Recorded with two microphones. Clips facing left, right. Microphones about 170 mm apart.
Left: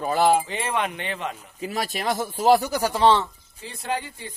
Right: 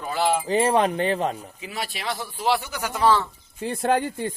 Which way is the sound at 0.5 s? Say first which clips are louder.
Right 7 dB; 35° right (ahead or behind).